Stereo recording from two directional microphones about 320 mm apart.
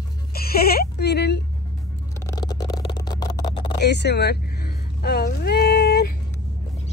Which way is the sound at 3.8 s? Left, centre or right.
Left.